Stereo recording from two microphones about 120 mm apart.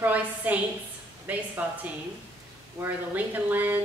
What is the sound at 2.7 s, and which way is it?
A woman's voice, 15° right (ahead or behind).